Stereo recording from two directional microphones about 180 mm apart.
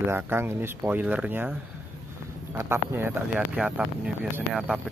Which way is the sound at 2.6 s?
15° right (ahead or behind).